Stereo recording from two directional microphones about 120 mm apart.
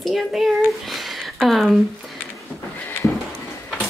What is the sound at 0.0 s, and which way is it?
Speech, centre (ahead or behind).